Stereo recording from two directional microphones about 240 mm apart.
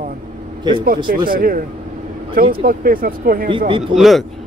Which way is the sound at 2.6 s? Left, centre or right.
Right.